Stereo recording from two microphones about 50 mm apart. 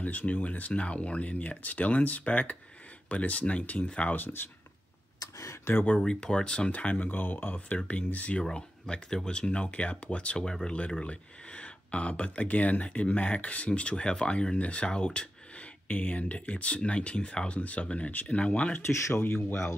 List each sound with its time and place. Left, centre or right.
0.0 s speech: left
4.1 s speech: left
6.0 s speech: centre
6.7 s speech: left
7.5 s speech: left
8.5 s speech: centre